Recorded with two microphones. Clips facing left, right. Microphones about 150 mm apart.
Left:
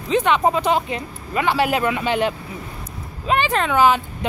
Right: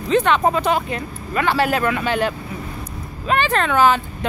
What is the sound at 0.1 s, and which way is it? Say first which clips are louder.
Speech: right 1 dB; 15° left (ahead or behind).